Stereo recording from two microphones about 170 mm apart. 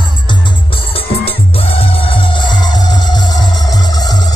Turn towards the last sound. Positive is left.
turn(degrees=20)  # may be behind; listen again after turning